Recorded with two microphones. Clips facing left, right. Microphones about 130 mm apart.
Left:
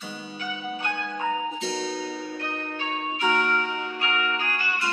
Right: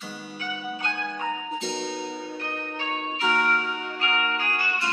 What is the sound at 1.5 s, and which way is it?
Music, centre (ahead or behind).